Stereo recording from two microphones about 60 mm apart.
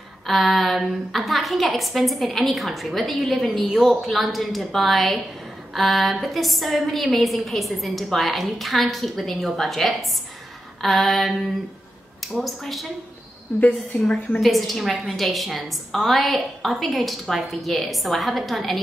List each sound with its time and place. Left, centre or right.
0.3 s a woman's voice: centre
13.6 s a woman's voice: left
14.4 s a woman's voice: centre